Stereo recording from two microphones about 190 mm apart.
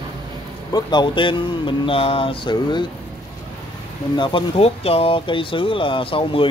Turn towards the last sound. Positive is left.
turn(degrees=30)  # may be behind; listen again after turning